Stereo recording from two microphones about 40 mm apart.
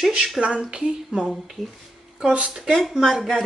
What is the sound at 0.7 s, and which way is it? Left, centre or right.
Speech, right.